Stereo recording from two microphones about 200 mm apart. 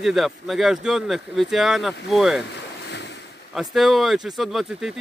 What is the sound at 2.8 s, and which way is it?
Waves, 60° left (ahead or behind).